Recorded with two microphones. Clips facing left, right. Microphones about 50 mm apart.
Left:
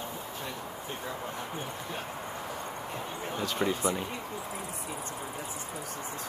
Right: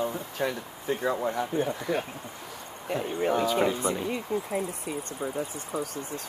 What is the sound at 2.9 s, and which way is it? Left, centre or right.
Speech, right.